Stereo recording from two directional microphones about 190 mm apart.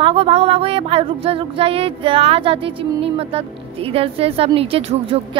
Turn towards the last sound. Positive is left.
turn(degrees=-30)  # may be behind; listen again after turning